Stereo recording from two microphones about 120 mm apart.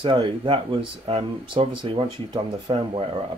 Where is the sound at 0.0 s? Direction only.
40° right (ahead or behind).